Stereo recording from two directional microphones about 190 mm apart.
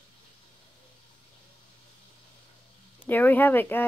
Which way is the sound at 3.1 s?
10° left (ahead or behind).